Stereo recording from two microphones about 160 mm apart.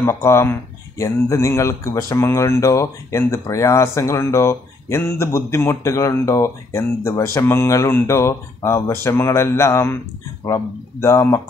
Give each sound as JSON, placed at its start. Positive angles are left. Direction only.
{"t": 0.0, "sound": "speech", "side_deg": 15}